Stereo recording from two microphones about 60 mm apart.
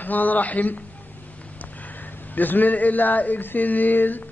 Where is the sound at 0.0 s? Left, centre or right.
Left.